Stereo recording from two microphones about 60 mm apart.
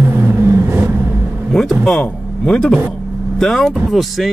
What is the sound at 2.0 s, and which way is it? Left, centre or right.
Speech, centre.